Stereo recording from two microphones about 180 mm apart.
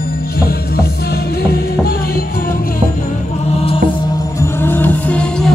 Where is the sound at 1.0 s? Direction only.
60° left (ahead or behind).